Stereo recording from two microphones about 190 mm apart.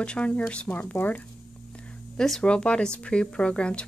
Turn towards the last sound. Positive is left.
turn(degrees=5)  # may be behind; listen again after turning